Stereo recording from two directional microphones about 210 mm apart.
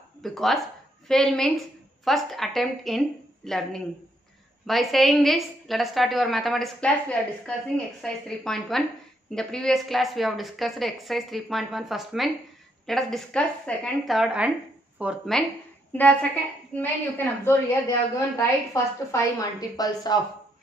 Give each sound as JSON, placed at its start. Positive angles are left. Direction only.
{"t": 0.2, "sound": "a woman's voice", "side_deg": 0}